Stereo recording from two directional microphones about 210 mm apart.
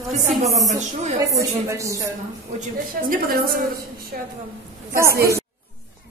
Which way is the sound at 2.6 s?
40° right (ahead or behind).